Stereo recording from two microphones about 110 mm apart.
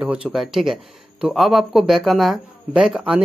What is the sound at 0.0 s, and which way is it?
Speech, 10° right (ahead or behind).